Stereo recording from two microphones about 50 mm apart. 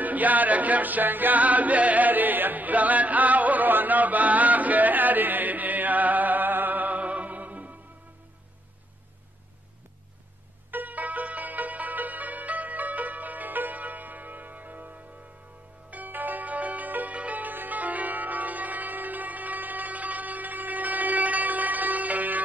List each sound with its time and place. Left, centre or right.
0.0 s a capella: right
10.7 s music: right